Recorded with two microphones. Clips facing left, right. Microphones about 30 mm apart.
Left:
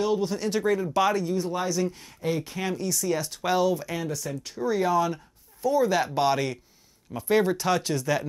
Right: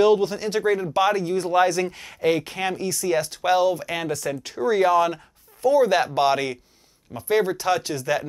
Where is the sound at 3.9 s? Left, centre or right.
Right.